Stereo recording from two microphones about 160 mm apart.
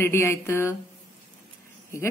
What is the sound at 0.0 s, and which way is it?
Speech, 15° left (ahead or behind).